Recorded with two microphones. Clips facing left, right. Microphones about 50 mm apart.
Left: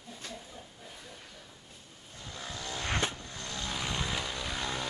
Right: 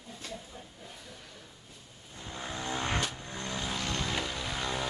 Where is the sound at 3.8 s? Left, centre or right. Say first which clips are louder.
Left 2 dB; centre.